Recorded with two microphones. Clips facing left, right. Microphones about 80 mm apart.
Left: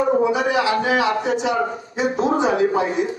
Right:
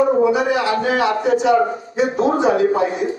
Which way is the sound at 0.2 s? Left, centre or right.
Right.